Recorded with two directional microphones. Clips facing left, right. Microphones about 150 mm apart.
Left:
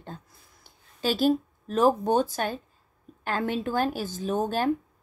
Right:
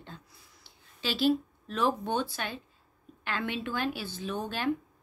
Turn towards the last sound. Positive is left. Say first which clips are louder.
# left 8 dB
turn(degrees=45)  # may be behind; listen again after turning